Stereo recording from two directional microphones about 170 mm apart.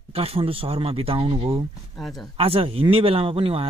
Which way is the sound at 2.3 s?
35° right (ahead or behind).